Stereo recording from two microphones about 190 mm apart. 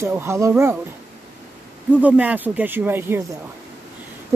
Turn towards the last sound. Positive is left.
turn(degrees=-10)  # may be behind; listen again after turning